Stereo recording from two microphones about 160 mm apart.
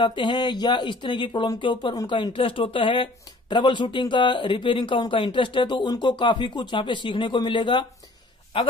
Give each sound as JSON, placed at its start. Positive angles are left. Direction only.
{"t": 0.0, "sound": "a man's voice", "side_deg": 30}